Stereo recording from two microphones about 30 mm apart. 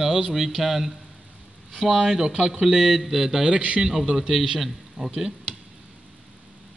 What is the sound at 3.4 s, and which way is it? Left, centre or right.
Speech, right.